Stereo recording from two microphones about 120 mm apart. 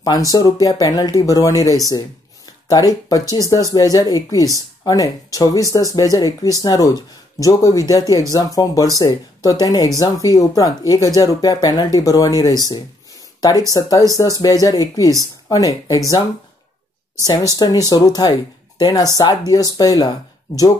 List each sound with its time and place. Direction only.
0.0 s speech: 30° left (ahead or behind)
17.2 s speech: 30° left (ahead or behind)